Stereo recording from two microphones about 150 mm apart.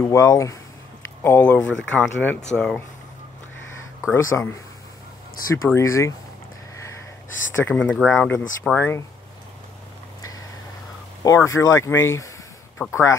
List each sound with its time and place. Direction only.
0.0 s speech: 20° left (ahead or behind); by 2.8 s 5° left (ahead or behind)
4.1 s speech: 15° left (ahead or behind)
5.8 s speech: 20° left (ahead or behind)
7.5 s speech: 10° left (ahead or behind)
11.2 s speech: 20° left (ahead or behind)